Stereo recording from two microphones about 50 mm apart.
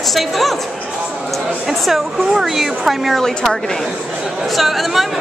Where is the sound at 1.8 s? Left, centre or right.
Centre.